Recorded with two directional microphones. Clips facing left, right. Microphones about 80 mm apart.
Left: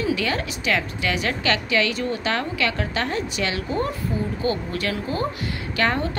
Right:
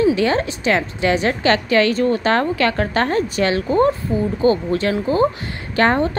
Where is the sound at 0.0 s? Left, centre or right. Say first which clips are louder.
Right 8 dB; right.